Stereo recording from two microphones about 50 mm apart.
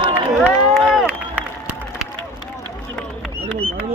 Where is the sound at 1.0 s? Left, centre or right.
Right.